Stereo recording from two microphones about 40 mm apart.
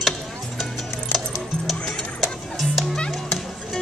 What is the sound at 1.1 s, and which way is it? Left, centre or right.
Music, left.